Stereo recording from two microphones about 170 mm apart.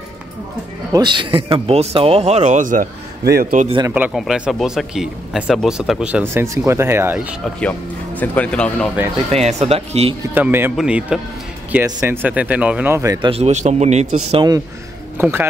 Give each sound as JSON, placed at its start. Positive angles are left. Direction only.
{"t": 0.9, "sound": "speech", "side_deg": -25}
{"t": 3.8, "sound": "speech", "side_deg": -10}
{"t": 6.3, "sound": "speech", "side_deg": -15}
{"t": 7.6, "sound": "speech", "side_deg": 10}
{"t": 9.3, "sound": "speech", "side_deg": -40}
{"t": 10.3, "sound": "speech", "side_deg": -10}
{"t": 13.3, "sound": "speech", "side_deg": -40}
{"t": 15.1, "sound": "speech", "side_deg": -10}